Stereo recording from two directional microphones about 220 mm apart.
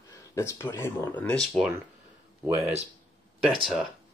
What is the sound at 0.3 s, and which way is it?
Speech, 15° left (ahead or behind).